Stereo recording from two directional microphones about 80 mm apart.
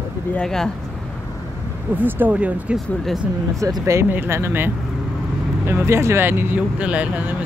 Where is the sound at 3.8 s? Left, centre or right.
Right; by 7.3 s centre.